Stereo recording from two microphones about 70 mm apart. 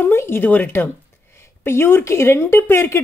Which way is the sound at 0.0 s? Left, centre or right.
Left.